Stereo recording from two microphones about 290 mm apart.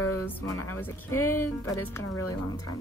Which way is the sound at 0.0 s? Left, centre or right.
Left.